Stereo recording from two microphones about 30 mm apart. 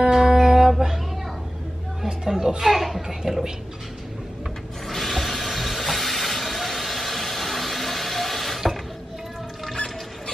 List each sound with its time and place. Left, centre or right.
0.0 s music: centre
2.2 s a sound: centre
2.7 s a child's voice: centre
3.1 s speech: centre
4.8 s mechanisms: centre